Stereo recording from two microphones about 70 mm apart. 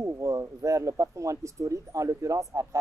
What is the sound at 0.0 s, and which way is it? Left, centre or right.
Speech, right.